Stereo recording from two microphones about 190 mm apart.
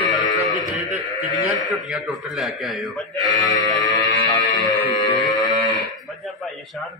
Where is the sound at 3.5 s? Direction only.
20° left (ahead or behind).